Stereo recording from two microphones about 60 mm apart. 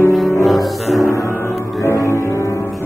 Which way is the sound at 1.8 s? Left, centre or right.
Left.